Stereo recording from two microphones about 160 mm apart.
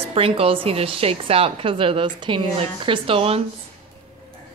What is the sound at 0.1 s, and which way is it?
A woman's voice, 35° right (ahead or behind).